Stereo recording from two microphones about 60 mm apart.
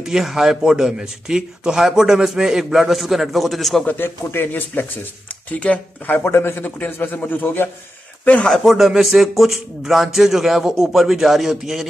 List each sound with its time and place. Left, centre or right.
0.0 s a man's voice: centre
3.8 s speech: left
6.2 s speech: left
6.6 s speech: left
8.5 s speech: centre